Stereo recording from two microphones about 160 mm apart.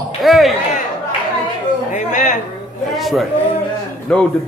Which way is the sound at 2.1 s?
50° left (ahead or behind).